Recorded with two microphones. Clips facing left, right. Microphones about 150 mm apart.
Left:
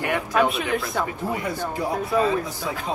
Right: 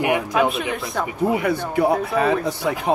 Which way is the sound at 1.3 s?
65° right (ahead or behind).